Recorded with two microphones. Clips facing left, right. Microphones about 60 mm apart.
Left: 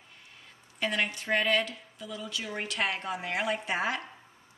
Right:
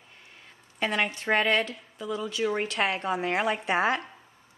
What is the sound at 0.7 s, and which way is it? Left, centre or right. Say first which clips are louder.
A woman's voice: right 3 dB; right.